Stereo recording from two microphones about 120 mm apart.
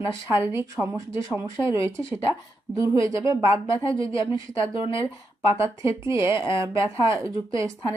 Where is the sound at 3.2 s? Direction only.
25° right (ahead or behind).